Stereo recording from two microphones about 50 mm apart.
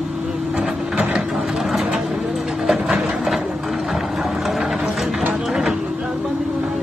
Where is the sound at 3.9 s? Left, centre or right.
Centre.